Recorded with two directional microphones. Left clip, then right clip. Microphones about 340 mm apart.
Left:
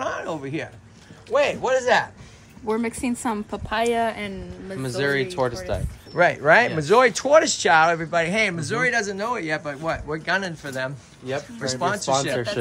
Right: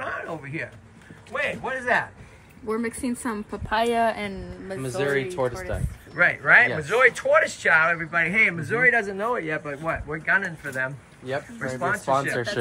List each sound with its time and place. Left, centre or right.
0.0 s a sound: centre
1.3 s a man's voice: centre
4.8 s speech: left
6.1 s speech: centre